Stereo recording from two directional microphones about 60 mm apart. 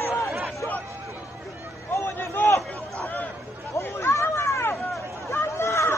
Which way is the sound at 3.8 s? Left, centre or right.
Left.